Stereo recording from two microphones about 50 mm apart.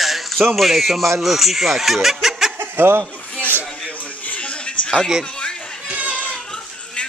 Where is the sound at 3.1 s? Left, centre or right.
Left.